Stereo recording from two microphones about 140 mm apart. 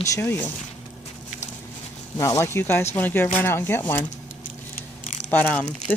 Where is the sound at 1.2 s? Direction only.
55° left (ahead or behind).